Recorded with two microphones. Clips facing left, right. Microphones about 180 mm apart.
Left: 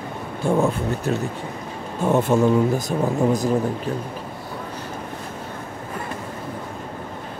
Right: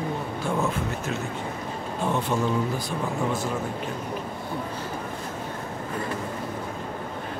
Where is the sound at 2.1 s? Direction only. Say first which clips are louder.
Left 9 dB; 45° left (ahead or behind).